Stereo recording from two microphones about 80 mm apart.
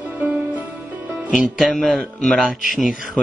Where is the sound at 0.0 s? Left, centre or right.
Centre.